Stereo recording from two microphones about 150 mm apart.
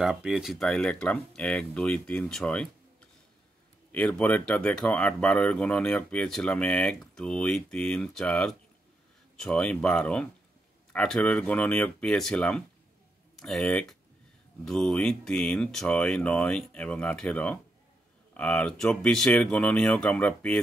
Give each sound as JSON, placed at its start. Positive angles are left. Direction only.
{"t": 0.0, "sound": "speech", "side_deg": -5}